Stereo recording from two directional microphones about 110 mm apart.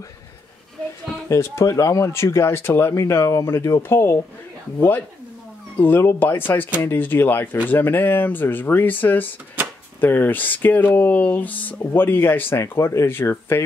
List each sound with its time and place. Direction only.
1.3 s speech: 25° left (ahead or behind)